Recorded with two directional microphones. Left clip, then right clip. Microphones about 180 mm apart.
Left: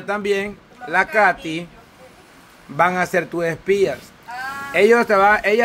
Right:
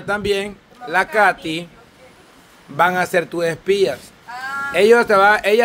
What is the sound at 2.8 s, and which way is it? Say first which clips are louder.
Speech: right 1 dB; 10° right (ahead or behind).